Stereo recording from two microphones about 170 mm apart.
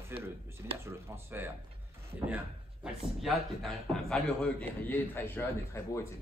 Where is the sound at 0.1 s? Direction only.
15° right (ahead or behind).